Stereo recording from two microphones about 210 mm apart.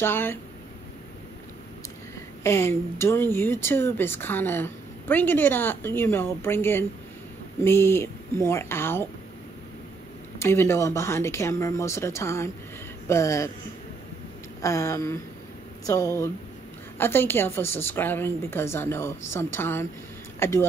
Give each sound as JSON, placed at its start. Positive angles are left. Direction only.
{"t": 0.0, "sound": "speech", "side_deg": 10}
{"t": 2.4, "sound": "speech", "side_deg": 10}
{"t": 10.4, "sound": "speech", "side_deg": 10}
{"t": 14.6, "sound": "speech", "side_deg": 15}